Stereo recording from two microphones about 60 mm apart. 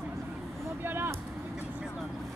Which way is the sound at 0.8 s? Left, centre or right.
Right.